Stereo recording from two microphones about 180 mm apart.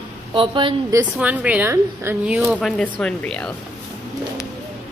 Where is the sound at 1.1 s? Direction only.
10° right (ahead or behind).